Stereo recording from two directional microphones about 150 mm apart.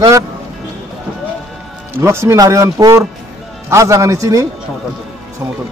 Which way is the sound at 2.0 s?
20° right (ahead or behind).